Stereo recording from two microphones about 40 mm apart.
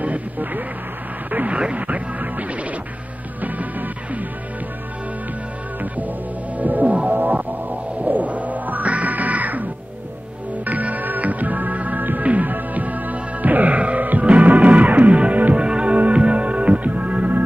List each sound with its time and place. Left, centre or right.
0.0 s speech: right
1.8 s music: right
5.8 s music: right
15.5 s music: right